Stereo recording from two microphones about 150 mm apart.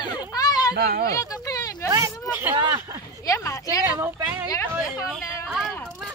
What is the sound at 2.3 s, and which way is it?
Speech, 15° right (ahead or behind).